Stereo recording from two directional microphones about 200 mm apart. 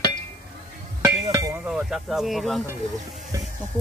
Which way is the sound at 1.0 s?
15° right (ahead or behind).